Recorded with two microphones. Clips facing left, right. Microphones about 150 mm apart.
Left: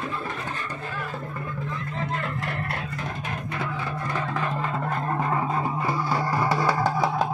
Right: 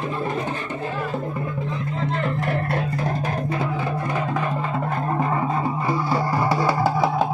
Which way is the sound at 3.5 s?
25° right (ahead or behind).